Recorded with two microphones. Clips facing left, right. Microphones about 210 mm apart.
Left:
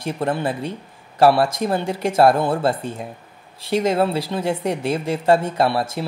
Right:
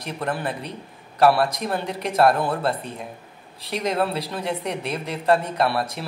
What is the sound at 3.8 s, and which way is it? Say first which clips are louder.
A woman's voice: left 2 dB; 25° left (ahead or behind).